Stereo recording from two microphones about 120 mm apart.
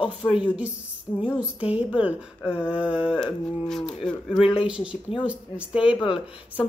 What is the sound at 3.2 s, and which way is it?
Speech, 5° left (ahead or behind).